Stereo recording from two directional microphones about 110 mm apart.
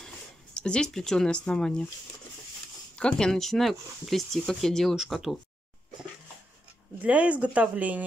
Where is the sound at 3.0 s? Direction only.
5° left (ahead or behind).